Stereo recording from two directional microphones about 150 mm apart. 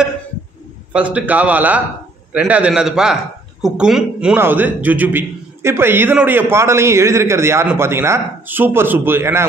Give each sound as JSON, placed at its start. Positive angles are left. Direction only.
{"t": 0.9, "sound": "a man's voice", "side_deg": -10}